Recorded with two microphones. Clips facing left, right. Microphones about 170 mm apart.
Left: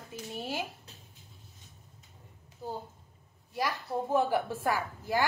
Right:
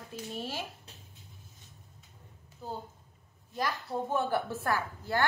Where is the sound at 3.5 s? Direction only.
10° left (ahead or behind).